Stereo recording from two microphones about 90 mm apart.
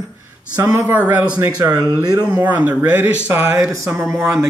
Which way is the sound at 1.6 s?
45° right (ahead or behind).